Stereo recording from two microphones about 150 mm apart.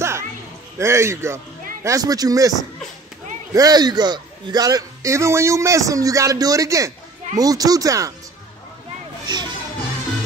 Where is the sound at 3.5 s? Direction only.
25° right (ahead or behind).